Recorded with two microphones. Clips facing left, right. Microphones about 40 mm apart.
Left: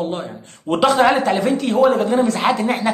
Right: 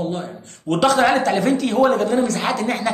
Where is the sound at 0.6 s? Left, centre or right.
Centre.